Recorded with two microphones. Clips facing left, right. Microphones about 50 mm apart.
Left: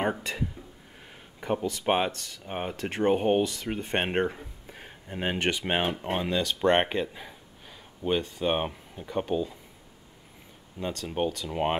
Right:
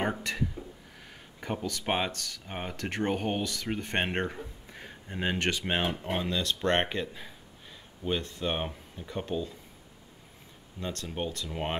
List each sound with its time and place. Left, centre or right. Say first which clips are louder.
1.1 s a sound: left 6 dB; centre
1.6 s speech: left 4 dB; left
1.9 s speech: left 5 dB; centre
4.3 s a sound: even; centre
5.2 s speech: left 2 dB; centre
10.8 s speech: left 5 dB; centre